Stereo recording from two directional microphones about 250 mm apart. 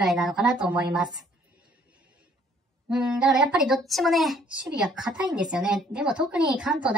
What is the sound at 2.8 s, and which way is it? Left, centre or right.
A child's voice, centre.